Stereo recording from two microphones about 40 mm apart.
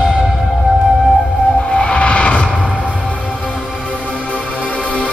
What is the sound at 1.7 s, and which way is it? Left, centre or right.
Vehicle, left.